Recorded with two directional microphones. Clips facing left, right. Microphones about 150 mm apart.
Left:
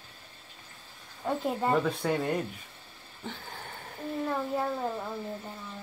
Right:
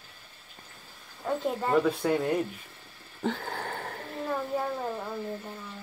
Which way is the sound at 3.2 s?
70° right (ahead or behind).